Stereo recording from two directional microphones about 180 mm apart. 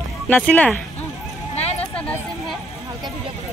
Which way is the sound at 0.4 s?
10° left (ahead or behind).